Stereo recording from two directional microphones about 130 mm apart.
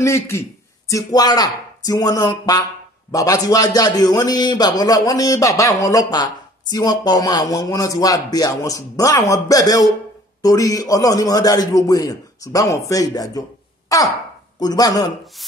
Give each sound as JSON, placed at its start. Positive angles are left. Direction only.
{"t": 0.0, "sound": "speech", "side_deg": 20}
{"t": 13.9, "sound": "throat clearing", "side_deg": 25}
{"t": 14.6, "sound": "speech", "side_deg": 30}